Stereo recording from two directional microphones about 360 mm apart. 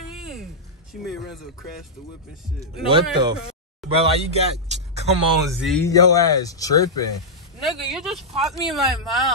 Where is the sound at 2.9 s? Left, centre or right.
Centre.